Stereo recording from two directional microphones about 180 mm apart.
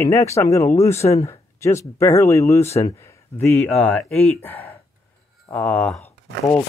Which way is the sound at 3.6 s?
10° left (ahead or behind).